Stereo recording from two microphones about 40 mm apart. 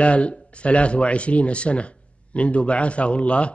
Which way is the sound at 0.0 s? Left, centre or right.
Left.